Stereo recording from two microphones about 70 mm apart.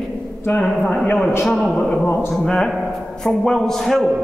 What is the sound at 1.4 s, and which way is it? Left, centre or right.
Speech, centre.